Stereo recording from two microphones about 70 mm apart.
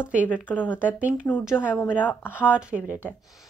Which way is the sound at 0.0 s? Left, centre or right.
Right.